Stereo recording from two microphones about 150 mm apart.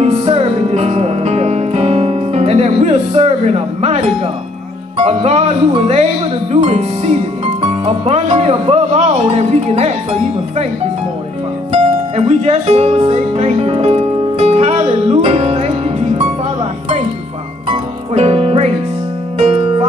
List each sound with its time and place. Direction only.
0.0 s music: 40° right (ahead or behind)
4.9 s speech: 45° right (ahead or behind)
11.7 s music: 45° right (ahead or behind)
17.6 s music: 45° right (ahead or behind)